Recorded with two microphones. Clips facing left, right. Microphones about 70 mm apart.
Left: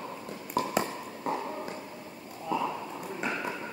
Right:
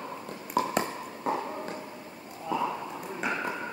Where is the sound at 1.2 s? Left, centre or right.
Centre.